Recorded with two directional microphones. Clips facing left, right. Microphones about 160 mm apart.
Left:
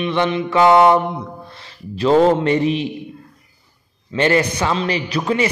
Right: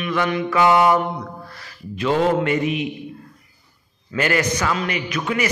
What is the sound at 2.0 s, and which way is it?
Speech, 35° left (ahead or behind).